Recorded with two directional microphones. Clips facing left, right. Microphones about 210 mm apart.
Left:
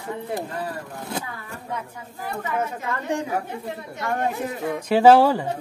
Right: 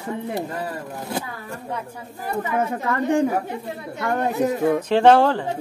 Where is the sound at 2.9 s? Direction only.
55° right (ahead or behind).